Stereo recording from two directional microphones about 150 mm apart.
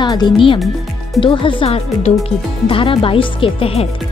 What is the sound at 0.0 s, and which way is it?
Speech, 30° left (ahead or behind).